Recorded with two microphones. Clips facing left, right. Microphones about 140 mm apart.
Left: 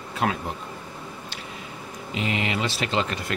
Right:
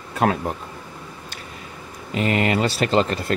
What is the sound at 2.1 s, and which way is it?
Speech, 50° right (ahead or behind).